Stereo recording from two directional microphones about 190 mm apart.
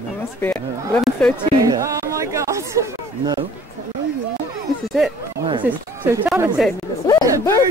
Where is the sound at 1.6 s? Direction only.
15° right (ahead or behind).